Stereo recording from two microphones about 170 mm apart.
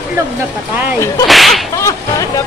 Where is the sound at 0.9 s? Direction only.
20° left (ahead or behind).